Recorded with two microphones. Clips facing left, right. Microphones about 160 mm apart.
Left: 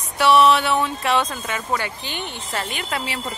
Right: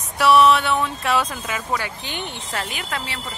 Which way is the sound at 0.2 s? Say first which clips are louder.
Even; centre (ahead or behind).